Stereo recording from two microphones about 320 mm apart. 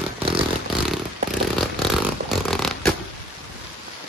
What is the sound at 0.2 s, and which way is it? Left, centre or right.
Vehicle, centre.